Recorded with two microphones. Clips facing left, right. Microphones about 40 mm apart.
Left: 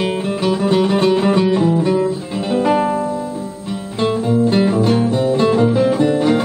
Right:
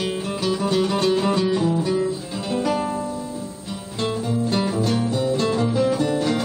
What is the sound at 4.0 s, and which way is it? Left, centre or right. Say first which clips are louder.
Music: left 8 dB; left.